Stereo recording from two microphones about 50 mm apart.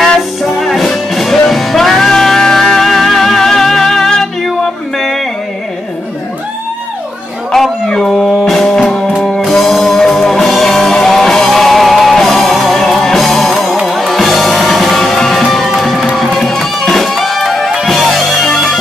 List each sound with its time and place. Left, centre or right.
0.4 s music: centre
7.5 s music: centre